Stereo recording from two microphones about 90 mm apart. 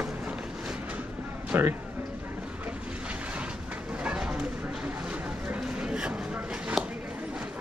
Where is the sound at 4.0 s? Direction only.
10° right (ahead or behind).